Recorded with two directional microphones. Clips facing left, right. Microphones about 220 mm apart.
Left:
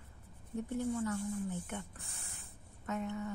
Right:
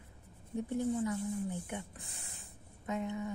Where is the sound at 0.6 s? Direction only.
15° right (ahead or behind).